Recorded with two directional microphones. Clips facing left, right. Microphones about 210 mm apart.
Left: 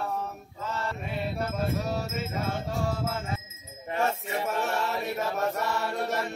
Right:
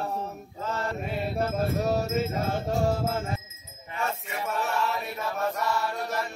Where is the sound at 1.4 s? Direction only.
40° right (ahead or behind).